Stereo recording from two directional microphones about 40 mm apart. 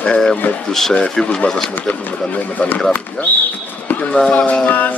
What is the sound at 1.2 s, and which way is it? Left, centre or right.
Speech, left.